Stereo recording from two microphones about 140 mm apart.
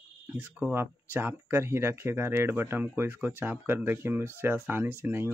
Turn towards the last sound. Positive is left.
turn(degrees=-15)  # may be behind; listen again after turning